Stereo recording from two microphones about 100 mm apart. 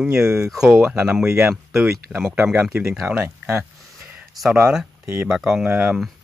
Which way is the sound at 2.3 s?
20° right (ahead or behind).